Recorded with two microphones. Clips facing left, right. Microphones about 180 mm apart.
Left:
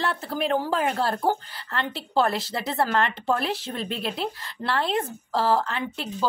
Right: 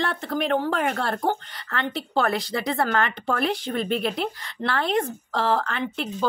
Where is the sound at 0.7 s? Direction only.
30° left (ahead or behind).